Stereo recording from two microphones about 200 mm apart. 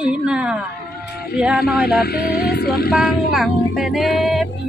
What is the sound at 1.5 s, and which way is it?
Speech, 50° left (ahead or behind).